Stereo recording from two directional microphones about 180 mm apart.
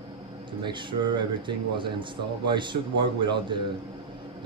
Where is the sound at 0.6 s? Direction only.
25° right (ahead or behind).